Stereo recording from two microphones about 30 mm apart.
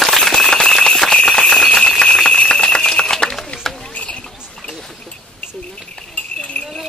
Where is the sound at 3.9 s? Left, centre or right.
Left.